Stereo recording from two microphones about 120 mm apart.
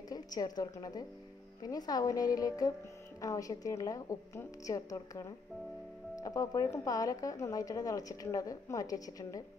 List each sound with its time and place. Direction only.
0.1 s speech: 35° left (ahead or behind)